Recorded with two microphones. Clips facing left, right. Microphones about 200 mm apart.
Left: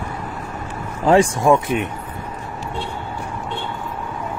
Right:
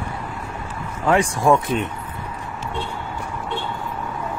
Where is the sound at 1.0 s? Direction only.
30° left (ahead or behind).